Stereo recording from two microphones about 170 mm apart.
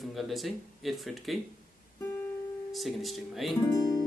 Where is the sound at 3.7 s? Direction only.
20° left (ahead or behind).